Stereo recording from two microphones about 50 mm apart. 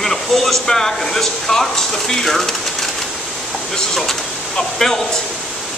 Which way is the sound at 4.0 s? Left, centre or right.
Centre.